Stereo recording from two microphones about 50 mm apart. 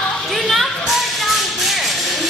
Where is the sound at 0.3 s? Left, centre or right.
Centre.